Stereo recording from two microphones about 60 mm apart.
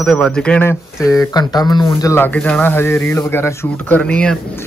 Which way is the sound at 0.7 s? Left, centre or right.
Left.